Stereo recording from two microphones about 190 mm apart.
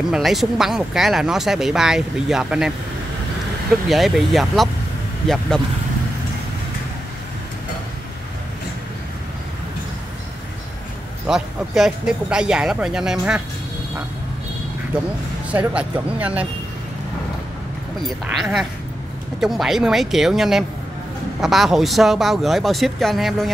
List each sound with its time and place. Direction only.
0.1 s speech: centre (ahead or behind)
3.9 s speech: centre (ahead or behind)
11.2 s speech: centre (ahead or behind)
15.5 s speech: 5° right (ahead or behind)
18.0 s speech: centre (ahead or behind)